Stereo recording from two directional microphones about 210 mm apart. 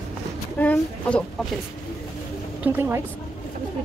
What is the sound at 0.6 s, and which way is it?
Speech, 5° left (ahead or behind).